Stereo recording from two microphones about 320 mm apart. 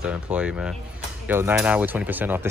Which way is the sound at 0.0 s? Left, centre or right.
Centre.